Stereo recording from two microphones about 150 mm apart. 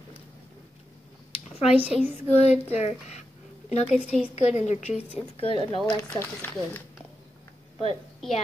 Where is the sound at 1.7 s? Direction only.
10° right (ahead or behind).